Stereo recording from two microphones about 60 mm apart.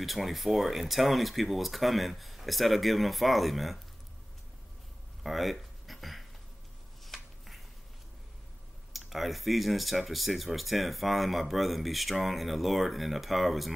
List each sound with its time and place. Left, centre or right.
0.0 s speech: centre
5.2 s a sound: centre
7.1 s finger snapping: centre
8.9 s speech: centre